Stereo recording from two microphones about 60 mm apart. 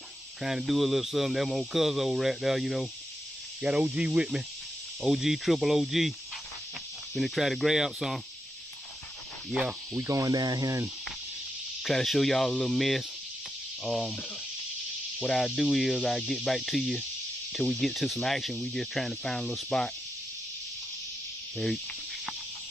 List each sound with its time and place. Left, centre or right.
0.4 s speech: centre
3.6 s speech: centre
7.2 s speech: centre
9.9 s speech: right
10.2 s speech: right
11.8 s speech: centre
15.2 s speech: centre